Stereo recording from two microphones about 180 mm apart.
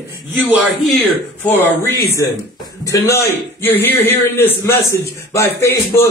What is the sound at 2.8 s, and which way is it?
Speech, 15° left (ahead or behind).